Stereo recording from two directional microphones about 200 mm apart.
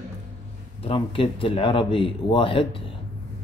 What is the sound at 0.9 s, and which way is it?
Speech, 25° left (ahead or behind).